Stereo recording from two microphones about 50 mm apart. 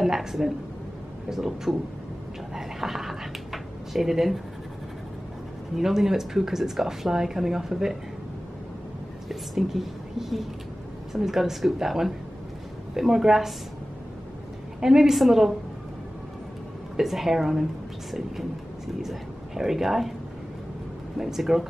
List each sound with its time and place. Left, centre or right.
0.0 s a woman's voice: centre
5.8 s speech: centre
9.3 s a woman's voice: centre
14.8 s speech: centre
16.9 s a woman's voice: centre
18.9 s speech: centre
21.2 s speech: centre